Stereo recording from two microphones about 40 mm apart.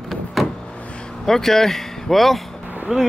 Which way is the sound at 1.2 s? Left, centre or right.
Centre.